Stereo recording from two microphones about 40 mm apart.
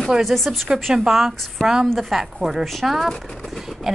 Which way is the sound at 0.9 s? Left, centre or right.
Right.